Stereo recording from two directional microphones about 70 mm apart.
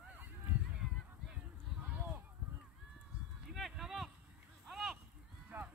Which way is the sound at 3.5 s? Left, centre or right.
Centre.